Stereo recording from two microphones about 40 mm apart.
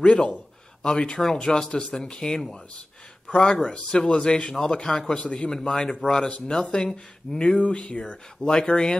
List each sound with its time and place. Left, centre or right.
0.0 s speech: left
1.7 s speech: left
2.0 s speech: centre
3.9 s speech: centre
5.5 s speech: centre